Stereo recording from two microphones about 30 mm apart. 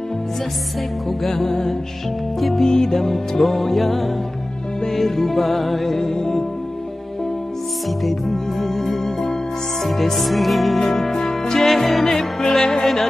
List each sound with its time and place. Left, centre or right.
1.3 s music: centre
8.0 s music: centre
10.8 s music: centre
12.2 s music: centre